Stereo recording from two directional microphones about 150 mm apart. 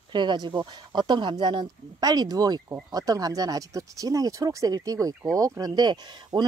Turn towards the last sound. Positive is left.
turn(degrees=-30)  # may be behind; listen again after turning